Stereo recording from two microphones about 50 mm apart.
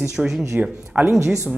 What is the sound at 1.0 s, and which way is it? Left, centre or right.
Speech, right.